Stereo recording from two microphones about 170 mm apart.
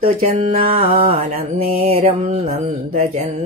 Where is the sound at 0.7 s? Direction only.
55° right (ahead or behind).